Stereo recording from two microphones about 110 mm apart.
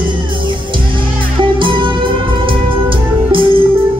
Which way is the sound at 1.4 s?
50° right (ahead or behind).